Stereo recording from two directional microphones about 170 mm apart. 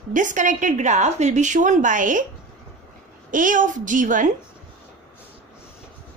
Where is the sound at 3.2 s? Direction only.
50° right (ahead or behind).